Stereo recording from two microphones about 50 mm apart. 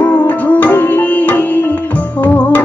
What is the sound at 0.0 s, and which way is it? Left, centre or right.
Music, left.